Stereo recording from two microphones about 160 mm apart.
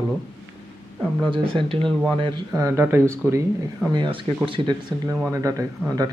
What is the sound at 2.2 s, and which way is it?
Speech, 25° right (ahead or behind).